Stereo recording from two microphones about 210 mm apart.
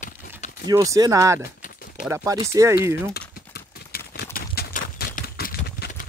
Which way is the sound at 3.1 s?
50° left (ahead or behind).